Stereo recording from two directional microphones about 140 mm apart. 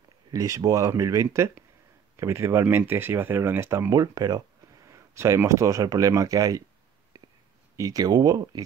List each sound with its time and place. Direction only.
0.3 s speech: 25° right (ahead or behind)
7.7 s speech: 25° right (ahead or behind)